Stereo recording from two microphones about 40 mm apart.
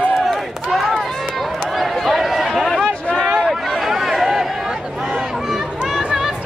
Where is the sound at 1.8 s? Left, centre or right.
Centre.